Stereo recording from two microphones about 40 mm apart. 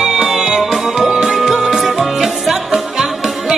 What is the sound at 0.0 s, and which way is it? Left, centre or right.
Music, centre.